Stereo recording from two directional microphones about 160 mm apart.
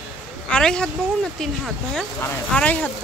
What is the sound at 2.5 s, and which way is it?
Speech, 10° left (ahead or behind).